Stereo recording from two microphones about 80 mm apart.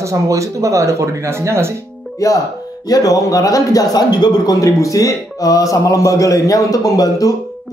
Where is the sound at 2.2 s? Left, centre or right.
Left.